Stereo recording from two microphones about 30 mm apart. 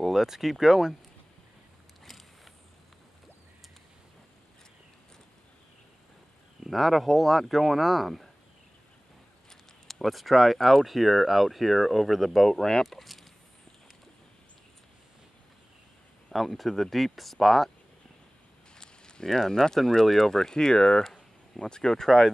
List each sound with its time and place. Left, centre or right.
0.0 s speech: centre
2.0 s a sound: centre
6.7 s speech: centre
10.0 s speech: centre
12.8 s speech: centre
16.3 s speech: centre
18.8 s a sound: left
19.3 s speech: centre